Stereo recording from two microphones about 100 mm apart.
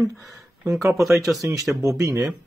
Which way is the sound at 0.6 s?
30° right (ahead or behind).